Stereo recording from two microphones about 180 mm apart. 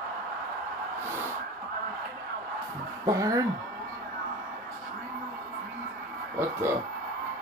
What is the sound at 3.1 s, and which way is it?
Speech, 20° right (ahead or behind).